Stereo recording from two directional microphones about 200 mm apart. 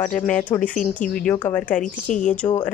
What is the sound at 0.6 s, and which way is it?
Speech, 40° left (ahead or behind).